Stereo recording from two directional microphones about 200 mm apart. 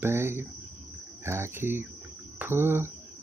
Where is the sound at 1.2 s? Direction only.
10° right (ahead or behind).